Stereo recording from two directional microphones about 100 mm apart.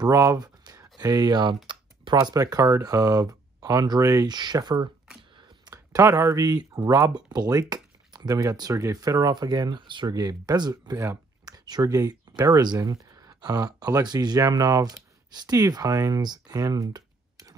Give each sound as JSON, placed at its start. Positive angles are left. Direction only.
{"t": 0.0, "sound": "speech", "side_deg": -30}